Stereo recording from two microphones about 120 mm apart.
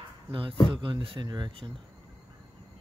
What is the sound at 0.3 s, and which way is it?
Speech, 45° right (ahead or behind).